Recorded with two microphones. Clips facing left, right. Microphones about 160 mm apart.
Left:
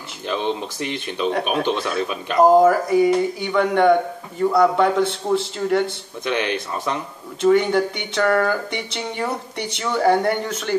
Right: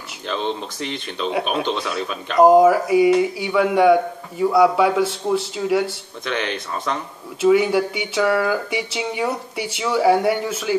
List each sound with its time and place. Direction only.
0.3 s speech: 10° left (ahead or behind)
2.4 s speech: 5° right (ahead or behind)
6.2 s speech: 10° left (ahead or behind)
7.4 s speech: 5° right (ahead or behind)